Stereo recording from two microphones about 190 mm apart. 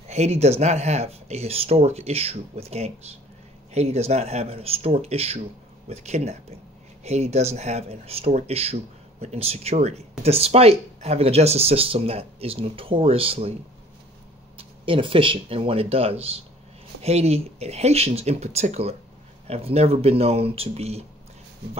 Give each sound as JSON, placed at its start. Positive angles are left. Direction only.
{"t": 0.1, "sound": "speech", "side_deg": -35}
{"t": 14.6, "sound": "speech", "side_deg": -30}